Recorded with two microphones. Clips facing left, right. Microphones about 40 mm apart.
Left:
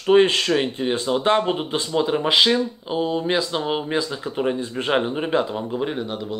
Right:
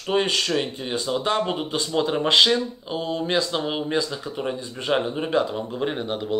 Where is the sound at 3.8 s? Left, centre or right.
Centre.